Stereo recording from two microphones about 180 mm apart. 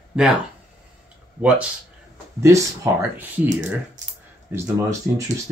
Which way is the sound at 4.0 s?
40° right (ahead or behind).